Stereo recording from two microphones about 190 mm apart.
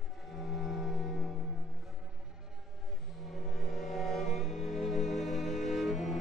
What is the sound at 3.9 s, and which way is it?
Music, centre (ahead or behind).